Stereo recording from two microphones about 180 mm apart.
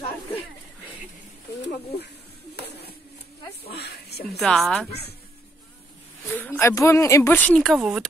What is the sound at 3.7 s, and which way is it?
Speech, 65° left (ahead or behind).